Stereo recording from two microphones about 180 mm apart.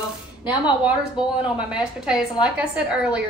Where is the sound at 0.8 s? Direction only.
5° right (ahead or behind).